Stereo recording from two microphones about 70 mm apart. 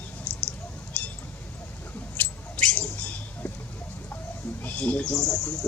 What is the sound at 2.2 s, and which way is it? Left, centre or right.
Squeak, left.